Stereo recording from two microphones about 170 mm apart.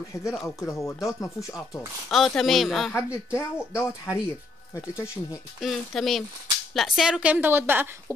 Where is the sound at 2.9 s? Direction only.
15° left (ahead or behind).